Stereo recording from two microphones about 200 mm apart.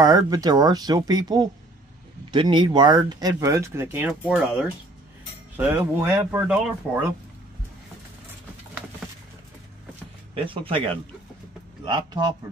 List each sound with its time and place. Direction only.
0.0 s speech: 20° right (ahead or behind)
10.3 s speech: 25° right (ahead or behind)